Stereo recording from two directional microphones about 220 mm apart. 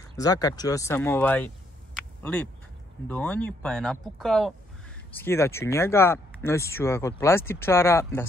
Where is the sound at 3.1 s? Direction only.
10° left (ahead or behind).